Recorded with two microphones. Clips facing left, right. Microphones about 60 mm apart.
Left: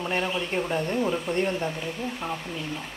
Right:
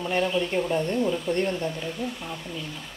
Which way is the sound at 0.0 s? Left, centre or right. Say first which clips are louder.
Right 3 dB; centre.